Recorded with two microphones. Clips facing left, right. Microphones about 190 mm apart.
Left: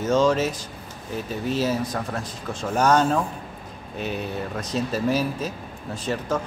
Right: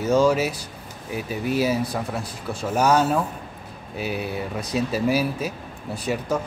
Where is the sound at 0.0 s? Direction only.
10° right (ahead or behind).